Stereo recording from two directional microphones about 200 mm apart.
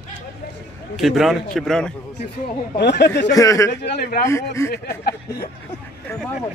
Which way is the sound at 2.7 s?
55° left (ahead or behind).